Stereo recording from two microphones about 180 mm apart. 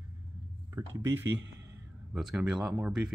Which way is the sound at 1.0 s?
15° right (ahead or behind).